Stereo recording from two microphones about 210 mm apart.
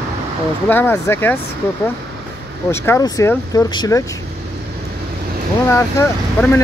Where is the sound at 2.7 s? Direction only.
10° left (ahead or behind).